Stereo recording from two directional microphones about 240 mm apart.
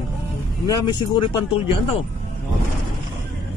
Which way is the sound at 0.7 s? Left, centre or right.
Centre.